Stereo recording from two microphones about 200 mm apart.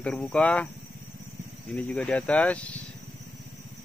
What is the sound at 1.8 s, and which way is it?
Speech, 5° left (ahead or behind).